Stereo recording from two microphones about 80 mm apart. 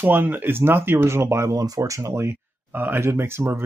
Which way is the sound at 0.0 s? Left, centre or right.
Right.